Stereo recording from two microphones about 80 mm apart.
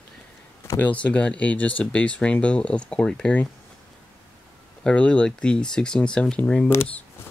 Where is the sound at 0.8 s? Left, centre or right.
Centre.